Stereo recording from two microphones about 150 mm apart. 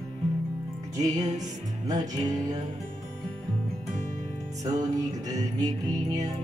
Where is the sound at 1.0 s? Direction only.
25° right (ahead or behind).